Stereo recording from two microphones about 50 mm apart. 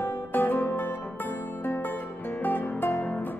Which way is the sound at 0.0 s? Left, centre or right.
Left.